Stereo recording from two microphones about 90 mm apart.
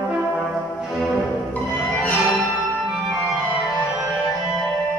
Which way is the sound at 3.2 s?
15° right (ahead or behind).